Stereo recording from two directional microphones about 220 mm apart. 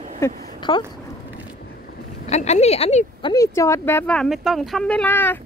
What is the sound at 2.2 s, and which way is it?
Speech, 30° left (ahead or behind).